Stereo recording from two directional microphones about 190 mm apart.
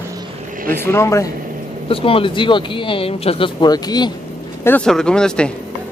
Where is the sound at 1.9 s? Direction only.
30° left (ahead or behind).